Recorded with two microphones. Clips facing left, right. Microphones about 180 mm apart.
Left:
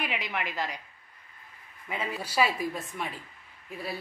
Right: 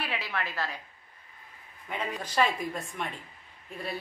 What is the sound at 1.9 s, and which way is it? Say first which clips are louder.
A woman's voice: even; 5° left (ahead or behind).